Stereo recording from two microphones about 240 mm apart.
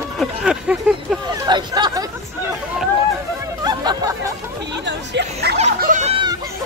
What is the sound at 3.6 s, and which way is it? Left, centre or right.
Hubbub, centre.